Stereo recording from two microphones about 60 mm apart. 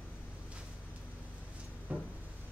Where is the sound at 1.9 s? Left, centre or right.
Right.